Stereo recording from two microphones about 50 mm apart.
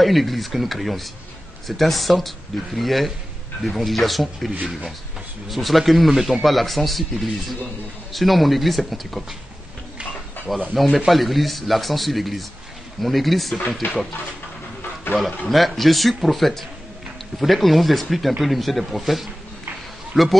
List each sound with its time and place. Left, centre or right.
0.0 s speech: centre
5.5 s speech: centre
10.7 s speech: centre
13.8 s speech: left
15.1 s speech: left
15.5 s speech: centre